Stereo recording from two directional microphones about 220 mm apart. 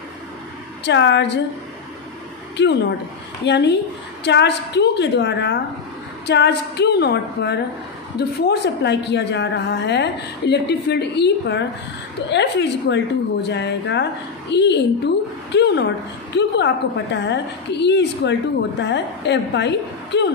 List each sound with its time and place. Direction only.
0.8 s a woman's voice: 55° left (ahead or behind)
2.5 s a woman's voice: 50° left (ahead or behind)